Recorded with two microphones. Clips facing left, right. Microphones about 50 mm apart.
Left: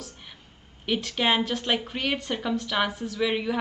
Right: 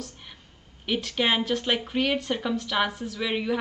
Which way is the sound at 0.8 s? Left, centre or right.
Centre.